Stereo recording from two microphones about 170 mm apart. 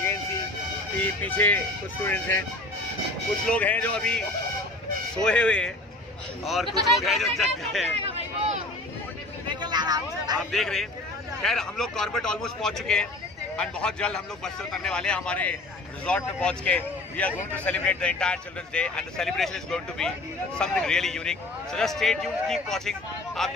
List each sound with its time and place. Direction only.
1.2 s speech: 10° left (ahead or behind)
3.4 s speech: 10° left (ahead or behind)
5.2 s speech: 5° left (ahead or behind)
7.9 s a sound: 35° right (ahead or behind)
9.5 s vehicle: 25° right (ahead or behind)
10.5 s speech: centre (ahead or behind)